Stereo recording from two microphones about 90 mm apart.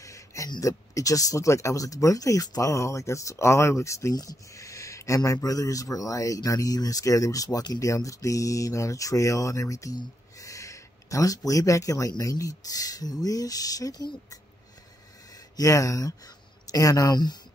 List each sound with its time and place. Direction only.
0.0 s a sound: 35° left (ahead or behind)
0.6 s speech: 40° left (ahead or behind)
15.5 s speech: 40° left (ahead or behind)